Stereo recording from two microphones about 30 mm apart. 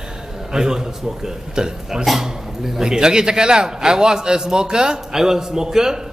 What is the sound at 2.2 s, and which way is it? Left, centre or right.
Speech, centre.